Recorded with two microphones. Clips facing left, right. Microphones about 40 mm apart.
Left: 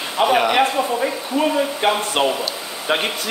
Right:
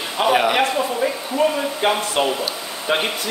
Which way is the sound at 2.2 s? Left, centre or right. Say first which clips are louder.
Left 2 dB; left.